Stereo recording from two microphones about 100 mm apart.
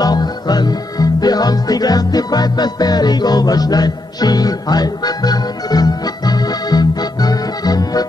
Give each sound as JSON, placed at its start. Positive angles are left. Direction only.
{"t": 0.0, "sound": "music", "side_deg": 45}